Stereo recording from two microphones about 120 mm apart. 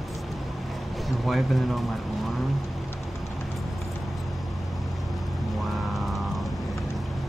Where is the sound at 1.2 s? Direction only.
Centre (ahead or behind).